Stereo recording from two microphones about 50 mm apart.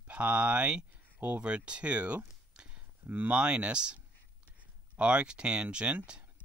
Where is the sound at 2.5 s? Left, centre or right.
Centre.